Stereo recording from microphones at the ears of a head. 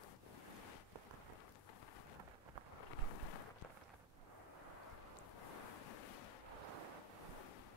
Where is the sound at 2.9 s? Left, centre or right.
Left.